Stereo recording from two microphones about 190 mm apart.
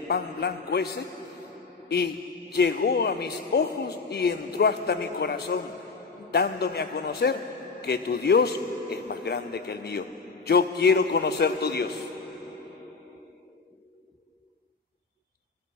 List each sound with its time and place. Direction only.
0.1 s a man's voice: 60° left (ahead or behind)
2.5 s a man's voice: 60° left (ahead or behind)